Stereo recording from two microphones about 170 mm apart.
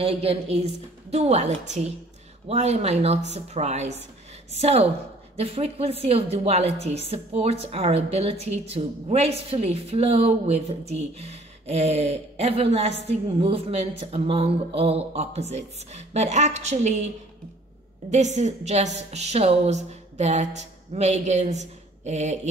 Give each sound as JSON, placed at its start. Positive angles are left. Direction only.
{"t": 0.0, "sound": "a woman's voice", "side_deg": -35}
{"t": 18.1, "sound": "a woman's voice", "side_deg": -40}